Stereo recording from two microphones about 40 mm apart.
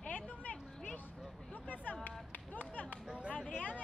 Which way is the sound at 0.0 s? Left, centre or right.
Left.